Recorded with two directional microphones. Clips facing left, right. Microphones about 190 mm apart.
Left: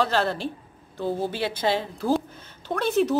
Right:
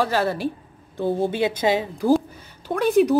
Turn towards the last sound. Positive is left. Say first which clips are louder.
# right 5 dB
turn(degrees=-15)  # may be behind; listen again after turning